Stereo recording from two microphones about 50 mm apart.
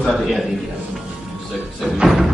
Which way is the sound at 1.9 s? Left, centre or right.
Centre.